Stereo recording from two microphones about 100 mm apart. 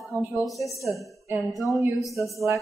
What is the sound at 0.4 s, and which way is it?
A woman's voice, centre (ahead or behind).